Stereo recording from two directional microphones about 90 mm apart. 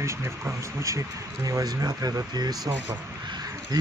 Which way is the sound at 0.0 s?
30° right (ahead or behind).